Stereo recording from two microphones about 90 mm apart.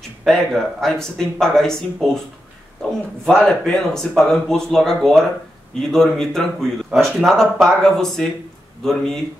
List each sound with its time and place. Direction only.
0.2 s speech: 5° left (ahead or behind)
3.3 s speech: 5° left (ahead or behind)
6.9 s speech: 15° right (ahead or behind)
7.2 s speech: 5° left (ahead or behind)